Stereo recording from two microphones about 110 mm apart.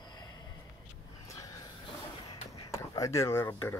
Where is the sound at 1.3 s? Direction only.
35° left (ahead or behind).